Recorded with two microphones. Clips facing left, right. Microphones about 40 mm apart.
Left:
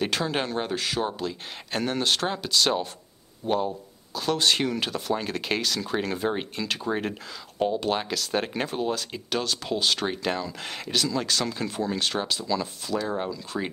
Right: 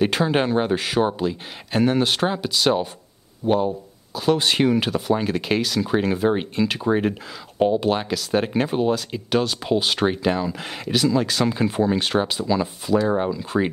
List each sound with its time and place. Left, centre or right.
0.0 s speech: centre